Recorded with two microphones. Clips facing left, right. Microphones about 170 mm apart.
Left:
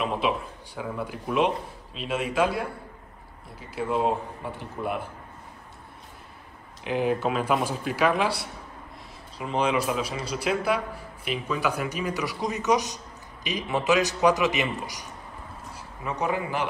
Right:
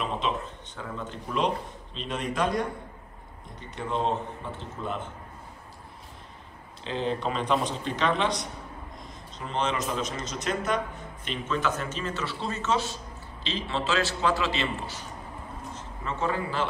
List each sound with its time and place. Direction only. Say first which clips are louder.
0.7 s a man's voice: left 4 dB; 10° left (ahead or behind)
3.7 s a man's voice: left 3 dB; 10° left (ahead or behind)
6.8 s a man's voice: left 4 dB; 10° left (ahead or behind)